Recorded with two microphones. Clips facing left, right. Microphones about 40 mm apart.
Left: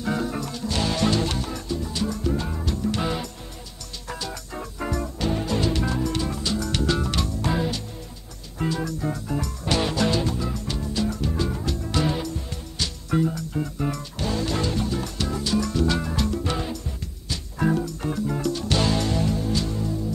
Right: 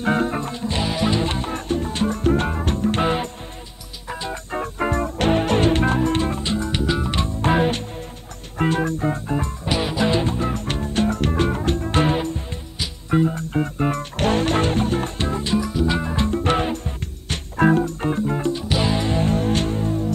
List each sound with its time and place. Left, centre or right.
0.0 s music: right
0.8 s music: centre
1.2 s music: right
1.5 s music: right
6.8 s music: centre
9.7 s music: centre; by 12.5 s right
12.7 s music: centre
13.3 s music: right
15.6 s music: centre
16.3 s music: right
19.2 s music: right